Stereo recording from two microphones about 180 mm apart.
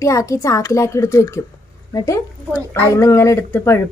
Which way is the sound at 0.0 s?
15° left (ahead or behind).